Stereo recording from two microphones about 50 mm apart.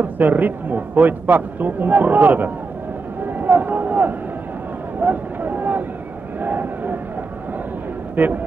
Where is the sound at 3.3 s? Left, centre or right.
Right.